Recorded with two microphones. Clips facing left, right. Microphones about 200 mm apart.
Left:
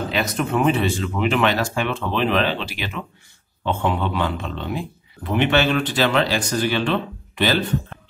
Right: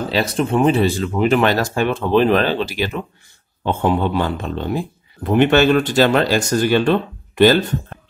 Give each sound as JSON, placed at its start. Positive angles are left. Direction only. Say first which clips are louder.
{"t": 0.1, "sound": "speech", "louder": "right 5 dB", "side_deg": -30}